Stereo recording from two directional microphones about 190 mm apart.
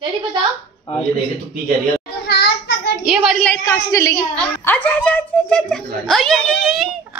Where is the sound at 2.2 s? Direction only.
60° left (ahead or behind).